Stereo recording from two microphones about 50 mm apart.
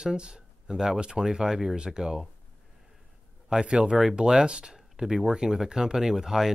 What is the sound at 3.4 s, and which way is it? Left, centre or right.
Speech, centre.